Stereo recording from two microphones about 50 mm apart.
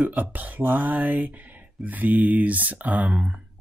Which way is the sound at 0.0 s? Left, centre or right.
Right.